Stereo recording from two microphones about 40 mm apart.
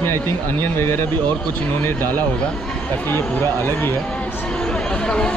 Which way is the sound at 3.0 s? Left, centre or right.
Left.